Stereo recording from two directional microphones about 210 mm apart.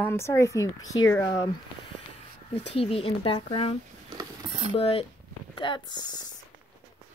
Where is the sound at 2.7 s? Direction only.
25° left (ahead or behind).